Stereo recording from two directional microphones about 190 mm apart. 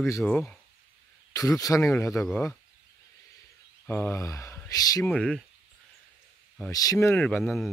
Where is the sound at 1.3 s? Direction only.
15° left (ahead or behind).